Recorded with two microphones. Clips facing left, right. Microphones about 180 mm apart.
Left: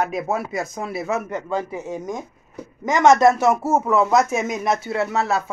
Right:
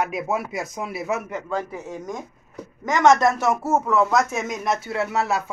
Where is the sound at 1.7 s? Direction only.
20° left (ahead or behind).